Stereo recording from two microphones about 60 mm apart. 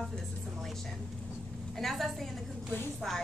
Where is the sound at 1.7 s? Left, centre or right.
Centre.